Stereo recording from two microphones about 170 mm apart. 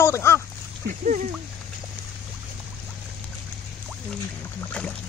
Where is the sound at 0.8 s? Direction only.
50° right (ahead or behind).